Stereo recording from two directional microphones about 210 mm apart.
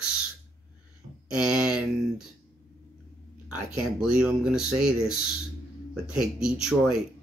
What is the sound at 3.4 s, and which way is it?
Speech, 5° right (ahead or behind).